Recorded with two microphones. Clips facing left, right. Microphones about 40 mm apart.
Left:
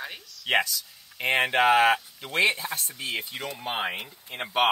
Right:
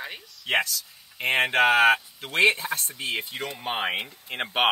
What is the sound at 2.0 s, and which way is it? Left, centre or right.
Speech, centre.